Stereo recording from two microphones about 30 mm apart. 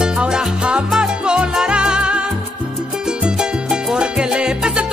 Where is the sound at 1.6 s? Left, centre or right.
Right.